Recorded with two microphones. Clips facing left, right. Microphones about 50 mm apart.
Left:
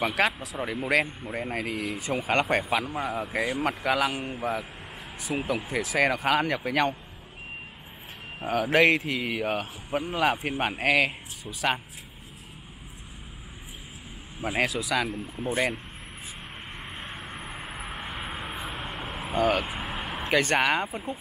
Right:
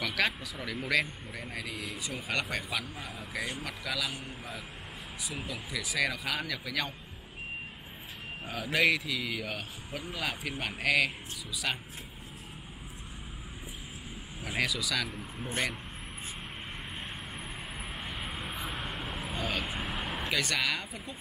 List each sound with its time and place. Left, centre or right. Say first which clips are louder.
0.0 s a man's voice: left 6 dB; left
5.3 s a man's voice: left 11 dB; left
8.5 s a man's voice: left 7 dB; left
14.4 s speech: left 5 dB; left
14.8 s speech: left 6 dB; left
17.0 s vehicle: left 3 dB; centre
18.2 s vehicle: left 3 dB; centre
18.6 s vehicle: left 2 dB; left
19.3 s speech: left 11 dB; left
19.7 s vehicle: left 2 dB; centre
20.2 s speech: left 9 dB; left